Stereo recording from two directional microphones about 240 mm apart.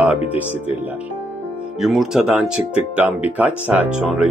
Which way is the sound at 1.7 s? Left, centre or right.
Centre.